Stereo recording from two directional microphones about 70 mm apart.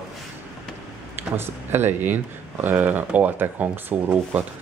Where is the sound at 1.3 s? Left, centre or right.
Right.